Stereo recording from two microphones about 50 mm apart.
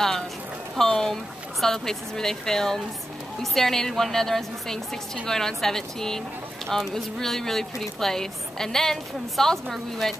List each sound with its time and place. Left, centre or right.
0.7 s a woman's voice: centre